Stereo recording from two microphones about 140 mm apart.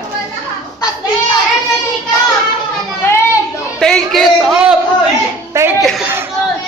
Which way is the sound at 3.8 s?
Centre (ahead or behind).